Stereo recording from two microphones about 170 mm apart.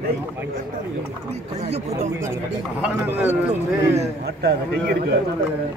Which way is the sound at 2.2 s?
15° right (ahead or behind).